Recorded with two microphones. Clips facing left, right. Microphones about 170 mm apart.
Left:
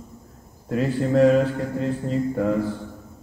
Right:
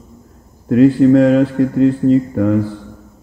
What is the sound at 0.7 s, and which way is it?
Speech, 90° right.